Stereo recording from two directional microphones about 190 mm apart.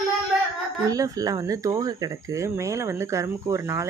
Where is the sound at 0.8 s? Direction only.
20° right (ahead or behind).